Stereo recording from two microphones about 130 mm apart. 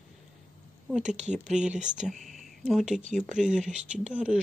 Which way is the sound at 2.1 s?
Centre (ahead or behind).